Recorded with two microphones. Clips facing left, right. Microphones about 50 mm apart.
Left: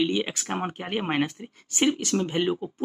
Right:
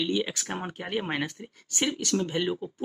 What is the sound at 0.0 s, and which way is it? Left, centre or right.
Speech, left.